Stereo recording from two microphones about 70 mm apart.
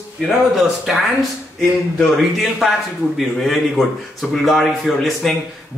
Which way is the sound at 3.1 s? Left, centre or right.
Centre.